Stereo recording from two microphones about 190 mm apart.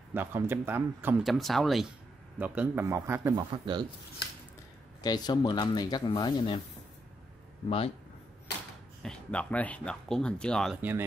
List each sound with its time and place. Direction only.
0.1 s speech: 10° right (ahead or behind)
5.0 s speech: 20° left (ahead or behind)
9.0 s speech: 5° left (ahead or behind)
10.8 s speech: 10° right (ahead or behind)